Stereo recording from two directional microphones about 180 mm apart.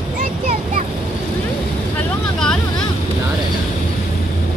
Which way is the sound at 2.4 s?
5° left (ahead or behind).